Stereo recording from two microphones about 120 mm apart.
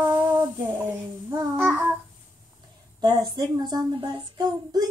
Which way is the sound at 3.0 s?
35° right (ahead or behind).